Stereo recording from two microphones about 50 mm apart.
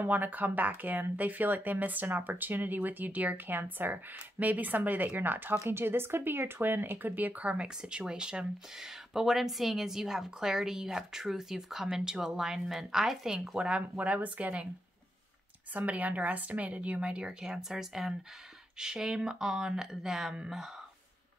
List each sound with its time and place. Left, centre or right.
0.0 s speech: right
7.7 s speech: centre
13.9 s a woman's voice: right
15.7 s a woman's voice: right; by 20.7 s centre